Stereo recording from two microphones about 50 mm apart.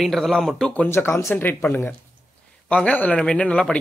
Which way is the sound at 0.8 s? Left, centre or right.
Left.